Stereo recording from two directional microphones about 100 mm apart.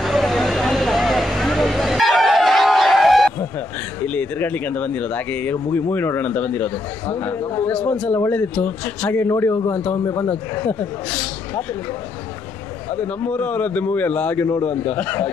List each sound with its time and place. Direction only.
0.0 s a sound: centre (ahead or behind)
4.0 s a man's voice: 15° left (ahead or behind)
12.9 s speech: 15° left (ahead or behind)